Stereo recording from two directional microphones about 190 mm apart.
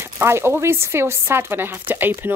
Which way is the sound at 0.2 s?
15° right (ahead or behind).